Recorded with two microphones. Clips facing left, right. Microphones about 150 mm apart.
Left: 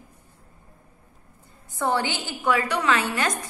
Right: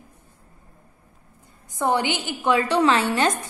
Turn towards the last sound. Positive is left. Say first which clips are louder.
# right 4 dB
turn(degrees=-25)  # may be behind; listen again after turning